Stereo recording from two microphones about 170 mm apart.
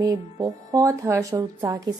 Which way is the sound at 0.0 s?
20° right (ahead or behind).